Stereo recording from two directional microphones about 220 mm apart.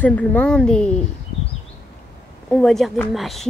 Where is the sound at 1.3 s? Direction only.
25° left (ahead or behind).